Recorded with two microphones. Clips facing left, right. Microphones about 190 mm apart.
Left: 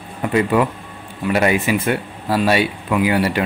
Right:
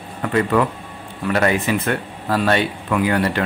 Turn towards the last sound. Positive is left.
turn(degrees=10)  # may be behind; listen again after turning